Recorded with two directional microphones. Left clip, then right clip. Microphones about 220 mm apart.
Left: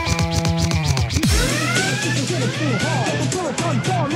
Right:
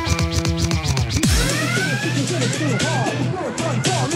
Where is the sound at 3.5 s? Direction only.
Centre (ahead or behind).